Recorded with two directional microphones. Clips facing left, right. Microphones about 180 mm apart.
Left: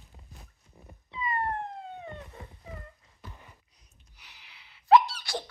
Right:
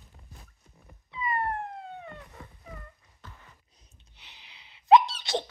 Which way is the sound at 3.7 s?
25° right (ahead or behind).